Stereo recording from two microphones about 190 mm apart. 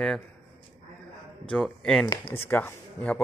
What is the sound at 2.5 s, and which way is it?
Speech, 10° left (ahead or behind).